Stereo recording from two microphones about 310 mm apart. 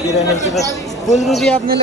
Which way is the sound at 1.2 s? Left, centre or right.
Centre.